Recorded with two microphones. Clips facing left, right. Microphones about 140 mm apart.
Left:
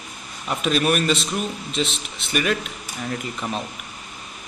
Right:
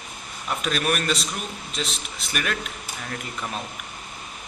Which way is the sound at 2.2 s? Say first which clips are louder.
Left 6 dB; 5° left (ahead or behind).